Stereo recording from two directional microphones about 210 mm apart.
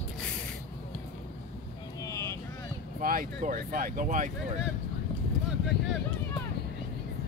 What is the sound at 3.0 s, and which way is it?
Speech, 40° right (ahead or behind).